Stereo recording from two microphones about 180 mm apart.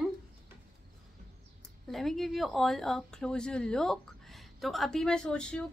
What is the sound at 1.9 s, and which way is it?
Speech, centre (ahead or behind).